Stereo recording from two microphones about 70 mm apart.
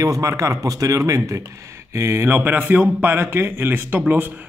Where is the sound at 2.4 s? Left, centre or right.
Right.